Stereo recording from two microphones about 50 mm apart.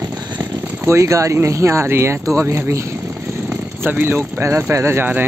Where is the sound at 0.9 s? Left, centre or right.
Right.